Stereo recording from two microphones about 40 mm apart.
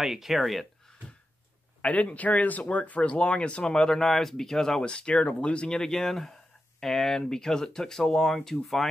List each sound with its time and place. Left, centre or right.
0.0 s speech: centre
0.4 s speech: centre
1.8 s speech: left; by 4.8 s centre
4.8 s speech: left
5.8 s speech: centre